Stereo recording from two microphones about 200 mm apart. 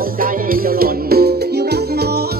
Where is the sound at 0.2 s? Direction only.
45° right (ahead or behind).